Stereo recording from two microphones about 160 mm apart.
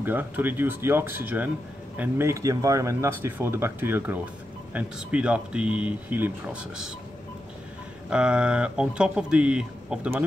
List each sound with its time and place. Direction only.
0.0 s speech: 10° right (ahead or behind)
8.1 s speech: 5° right (ahead or behind)